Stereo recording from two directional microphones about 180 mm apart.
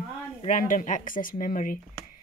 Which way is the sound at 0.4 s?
45° left (ahead or behind).